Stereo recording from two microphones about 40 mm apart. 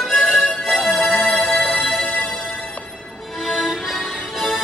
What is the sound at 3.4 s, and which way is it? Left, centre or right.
Music, centre.